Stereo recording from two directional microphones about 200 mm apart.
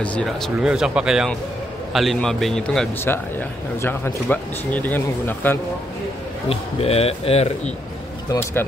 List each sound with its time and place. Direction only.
0.0 s a man's voice: 5° left (ahead or behind)
6.5 s a man's voice: 30° left (ahead or behind)
8.3 s a man's voice: 15° left (ahead or behind)